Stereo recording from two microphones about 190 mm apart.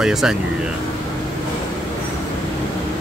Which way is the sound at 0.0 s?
5° right (ahead or behind).